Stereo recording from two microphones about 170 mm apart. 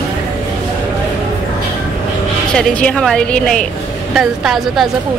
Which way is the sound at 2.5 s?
5° left (ahead or behind).